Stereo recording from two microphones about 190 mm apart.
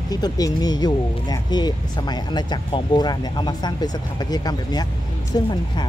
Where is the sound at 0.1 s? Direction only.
20° left (ahead or behind).